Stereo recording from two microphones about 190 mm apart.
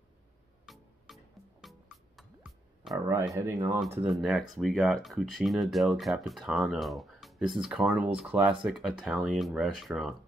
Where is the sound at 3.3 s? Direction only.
15° right (ahead or behind).